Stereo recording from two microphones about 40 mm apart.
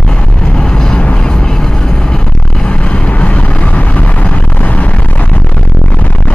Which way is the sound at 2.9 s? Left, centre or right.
Left.